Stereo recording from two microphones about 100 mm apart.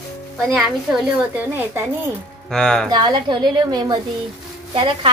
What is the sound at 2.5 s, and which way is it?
Speech, 5° left (ahead or behind).